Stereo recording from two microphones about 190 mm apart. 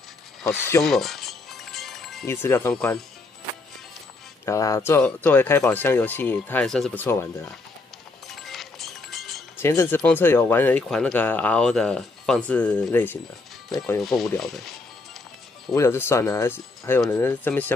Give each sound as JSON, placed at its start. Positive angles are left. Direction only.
{"t": 0.8, "sound": "music", "side_deg": 0}
{"t": 2.2, "sound": "speech", "side_deg": 15}
{"t": 4.5, "sound": "speech", "side_deg": 15}
{"t": 8.4, "sound": "music", "side_deg": 0}
{"t": 9.6, "sound": "speech", "side_deg": 15}
{"t": 14.0, "sound": "speech", "side_deg": 0}
{"t": 15.7, "sound": "speech", "side_deg": 15}